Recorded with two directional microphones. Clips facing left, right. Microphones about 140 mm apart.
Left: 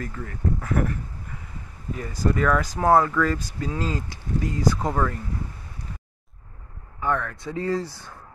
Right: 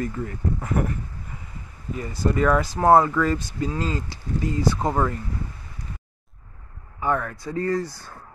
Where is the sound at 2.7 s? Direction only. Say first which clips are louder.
Right 2 dB; 10° right (ahead or behind).